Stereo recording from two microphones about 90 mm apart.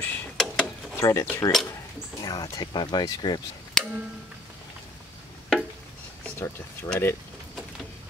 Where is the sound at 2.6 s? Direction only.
55° left (ahead or behind).